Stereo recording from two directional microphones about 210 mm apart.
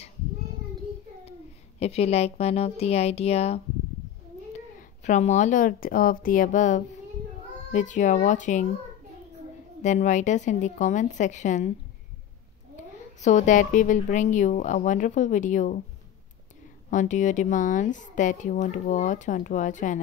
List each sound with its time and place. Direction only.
1.8 s speech: 30° left (ahead or behind)
5.0 s speech: 35° left (ahead or behind)
9.8 s speech: 35° left (ahead or behind)
13.2 s speech: 35° left (ahead or behind)
16.9 s speech: 35° left (ahead or behind)